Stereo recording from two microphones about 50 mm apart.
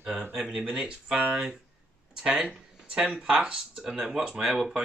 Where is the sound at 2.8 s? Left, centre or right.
Right.